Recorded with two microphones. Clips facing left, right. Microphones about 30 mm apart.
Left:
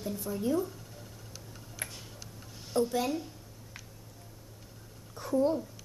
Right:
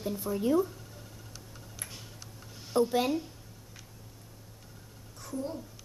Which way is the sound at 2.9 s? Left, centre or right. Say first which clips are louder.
Right 3 dB; centre.